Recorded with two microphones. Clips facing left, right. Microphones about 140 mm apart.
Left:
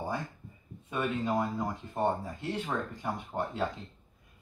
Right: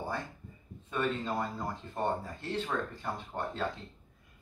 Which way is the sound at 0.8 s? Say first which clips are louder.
Left 1 dB; 15° left (ahead or behind).